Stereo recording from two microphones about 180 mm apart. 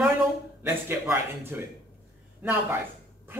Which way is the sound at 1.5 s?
10° right (ahead or behind).